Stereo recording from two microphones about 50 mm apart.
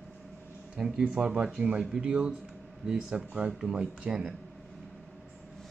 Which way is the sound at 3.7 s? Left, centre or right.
Right.